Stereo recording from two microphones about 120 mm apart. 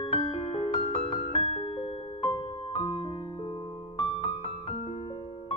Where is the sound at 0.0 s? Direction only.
55° left (ahead or behind).